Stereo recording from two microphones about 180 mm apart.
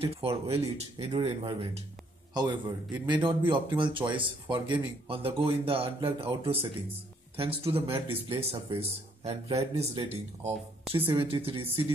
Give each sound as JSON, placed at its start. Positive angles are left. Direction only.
{"t": 0.0, "sound": "speech", "side_deg": -30}